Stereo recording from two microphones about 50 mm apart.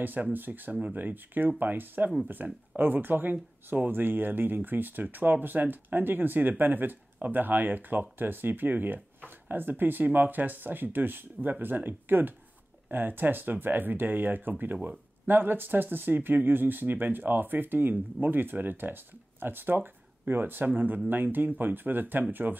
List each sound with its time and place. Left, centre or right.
0.0 s speech: right